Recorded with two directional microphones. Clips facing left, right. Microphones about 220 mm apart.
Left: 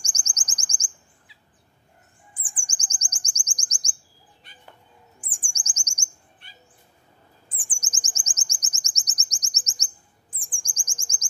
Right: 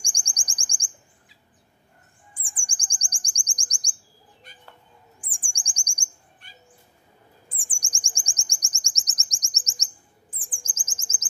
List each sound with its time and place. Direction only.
0.0 s chirp: 5° left (ahead or behind)
2.6 s chirp: 5° left (ahead or behind)
4.5 s bird: 45° right (ahead or behind)
5.2 s chirp: 5° left (ahead or behind)
6.4 s bird: 45° right (ahead or behind)
7.4 s chirp: 5° left (ahead or behind)